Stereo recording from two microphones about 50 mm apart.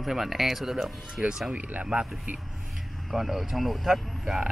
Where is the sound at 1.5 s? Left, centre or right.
Right.